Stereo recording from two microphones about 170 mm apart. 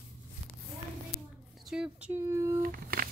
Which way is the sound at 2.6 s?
60° right (ahead or behind).